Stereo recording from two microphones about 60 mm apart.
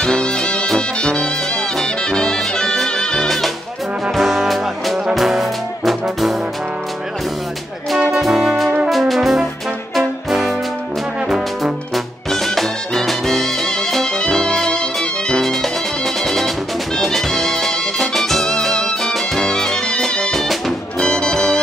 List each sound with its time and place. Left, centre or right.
0.0 s music: centre
4.1 s music: centre
5.1 s brass instrument: centre
8.1 s music: centre
8.8 s brass instrument: centre
9.9 s music: centre
11.2 s brass instrument: centre
12.3 s music: centre
21.0 s music: centre